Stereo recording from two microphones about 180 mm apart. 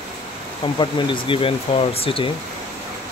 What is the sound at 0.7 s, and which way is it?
Speech, 25° left (ahead or behind).